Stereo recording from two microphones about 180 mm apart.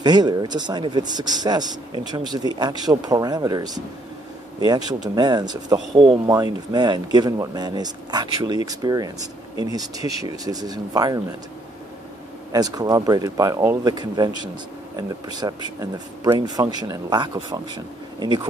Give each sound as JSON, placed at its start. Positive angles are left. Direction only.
{"t": 0.0, "sound": "speech", "side_deg": -25}
{"t": 12.5, "sound": "speech", "side_deg": -20}